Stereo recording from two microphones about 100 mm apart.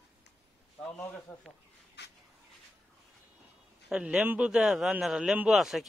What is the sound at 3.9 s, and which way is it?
A man's voice, 10° right (ahead or behind).